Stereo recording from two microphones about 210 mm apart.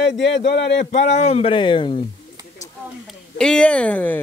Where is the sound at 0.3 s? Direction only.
55° left (ahead or behind).